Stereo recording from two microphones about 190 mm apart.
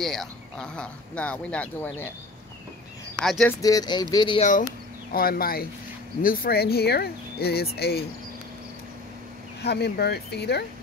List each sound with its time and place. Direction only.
0.0 s speech: centre (ahead or behind)
3.2 s speech: 5° left (ahead or behind)
3.6 s speech: 20° left (ahead or behind)
4.4 s speech: 40° left (ahead or behind)
9.6 s speech: 60° left (ahead or behind)